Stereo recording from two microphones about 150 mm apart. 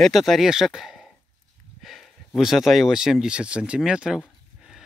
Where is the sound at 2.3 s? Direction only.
Centre (ahead or behind).